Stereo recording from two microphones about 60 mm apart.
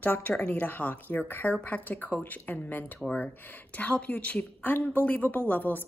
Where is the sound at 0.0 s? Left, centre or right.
Left.